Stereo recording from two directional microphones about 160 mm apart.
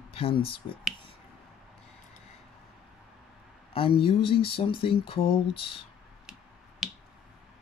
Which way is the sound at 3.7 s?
35° left (ahead or behind).